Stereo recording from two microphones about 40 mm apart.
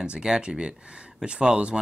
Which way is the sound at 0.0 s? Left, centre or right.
Right.